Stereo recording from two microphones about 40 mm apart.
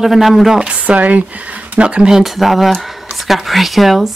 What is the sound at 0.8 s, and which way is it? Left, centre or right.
Speech, right.